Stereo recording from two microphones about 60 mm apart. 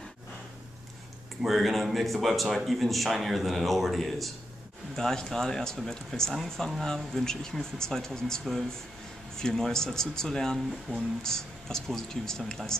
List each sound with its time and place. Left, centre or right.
1.4 s speech: centre